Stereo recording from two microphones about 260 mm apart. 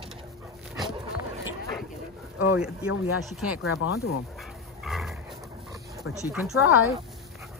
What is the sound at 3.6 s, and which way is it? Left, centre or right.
Speech, left.